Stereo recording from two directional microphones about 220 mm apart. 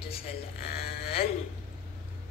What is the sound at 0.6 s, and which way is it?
Speech, 45° left (ahead or behind).